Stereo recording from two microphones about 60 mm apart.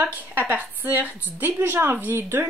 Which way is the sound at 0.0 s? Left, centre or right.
Right.